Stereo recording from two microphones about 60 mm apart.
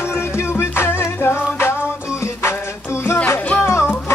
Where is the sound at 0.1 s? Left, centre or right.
Left.